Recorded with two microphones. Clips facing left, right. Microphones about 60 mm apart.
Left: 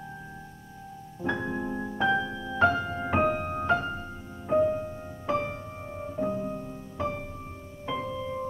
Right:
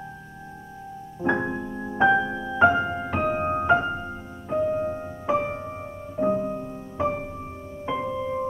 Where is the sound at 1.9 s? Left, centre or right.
Right.